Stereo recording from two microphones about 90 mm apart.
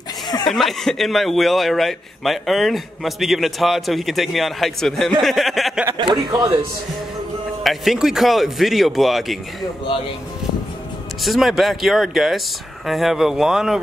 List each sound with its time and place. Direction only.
0.5 s a man's voice: centre (ahead or behind)
5.9 s a man's voice: 55° right (ahead or behind)
7.6 s a man's voice: centre (ahead or behind)
11.2 s a man's voice: centre (ahead or behind)